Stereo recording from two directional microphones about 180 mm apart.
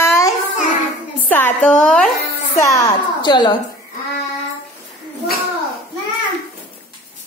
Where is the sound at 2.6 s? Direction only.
20° left (ahead or behind).